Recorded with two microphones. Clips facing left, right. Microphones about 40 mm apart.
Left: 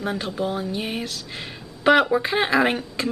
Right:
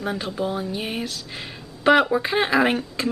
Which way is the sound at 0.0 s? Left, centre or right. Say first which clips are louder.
Even; centre.